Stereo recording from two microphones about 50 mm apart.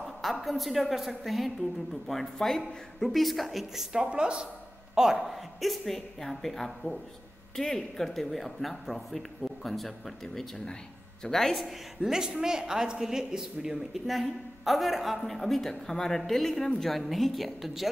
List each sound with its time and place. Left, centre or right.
0.0 s a woman's voice: centre
4.0 s speech: centre
4.9 s a woman's voice: centre
12.0 s a woman's voice: centre